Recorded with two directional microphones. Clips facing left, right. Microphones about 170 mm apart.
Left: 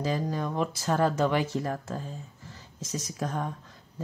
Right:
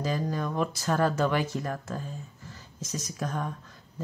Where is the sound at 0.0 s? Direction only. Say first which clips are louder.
Even; 25° left (ahead or behind).